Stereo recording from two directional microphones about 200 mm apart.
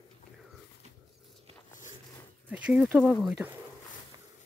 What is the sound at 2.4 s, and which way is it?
Speech, 5° right (ahead or behind).